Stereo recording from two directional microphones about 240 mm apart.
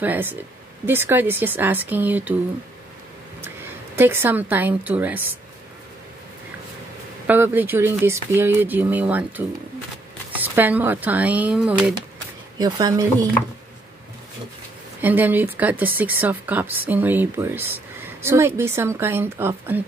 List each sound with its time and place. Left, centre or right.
0.0 s speech: centre
3.4 s a woman's voice: centre
7.2 s speech: centre
10.3 s speech: centre
12.5 s speech: centre
15.0 s speech: centre